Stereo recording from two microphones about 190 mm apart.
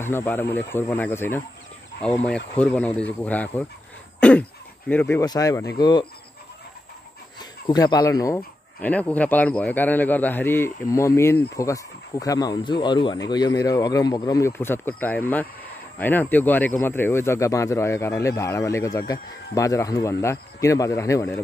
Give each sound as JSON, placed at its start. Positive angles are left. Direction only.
{"t": 0.0, "sound": "speech", "side_deg": 10}
{"t": 5.2, "sound": "speech", "side_deg": 20}
{"t": 7.3, "sound": "speech", "side_deg": 20}